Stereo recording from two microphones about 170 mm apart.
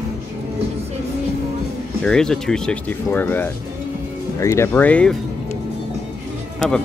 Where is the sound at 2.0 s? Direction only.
5° left (ahead or behind).